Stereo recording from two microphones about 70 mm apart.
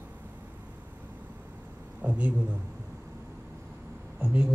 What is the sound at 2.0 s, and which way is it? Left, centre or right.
Speech, centre.